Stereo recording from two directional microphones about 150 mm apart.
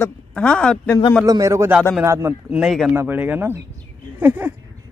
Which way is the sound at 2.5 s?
5° right (ahead or behind).